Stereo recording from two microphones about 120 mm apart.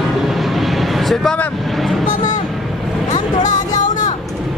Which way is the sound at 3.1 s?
90° left.